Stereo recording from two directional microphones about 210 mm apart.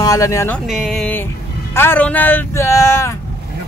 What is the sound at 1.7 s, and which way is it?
Speech, 10° left (ahead or behind).